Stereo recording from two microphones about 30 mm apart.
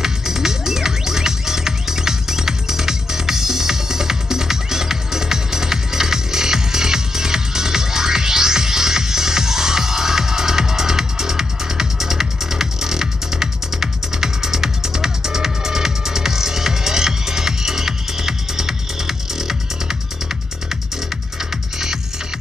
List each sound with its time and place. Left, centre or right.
0.0 s music: centre